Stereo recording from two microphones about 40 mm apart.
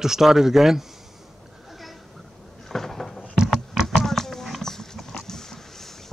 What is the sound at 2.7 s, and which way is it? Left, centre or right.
Cupboard open or close, centre.